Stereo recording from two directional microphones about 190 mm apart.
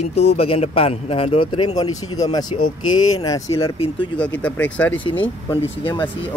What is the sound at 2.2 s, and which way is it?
Speech, 20° left (ahead or behind).